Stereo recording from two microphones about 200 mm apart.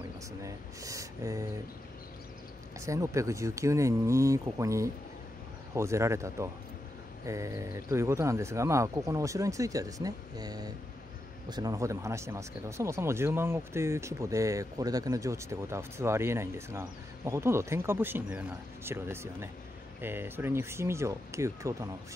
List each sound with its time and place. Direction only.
0.4 s speech: 15° right (ahead or behind)
2.8 s speech: 15° right (ahead or behind)